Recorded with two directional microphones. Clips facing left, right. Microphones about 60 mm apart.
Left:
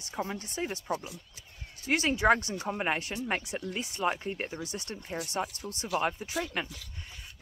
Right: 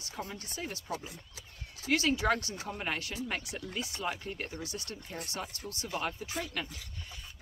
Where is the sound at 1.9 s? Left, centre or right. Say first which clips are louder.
Left 4 dB; left.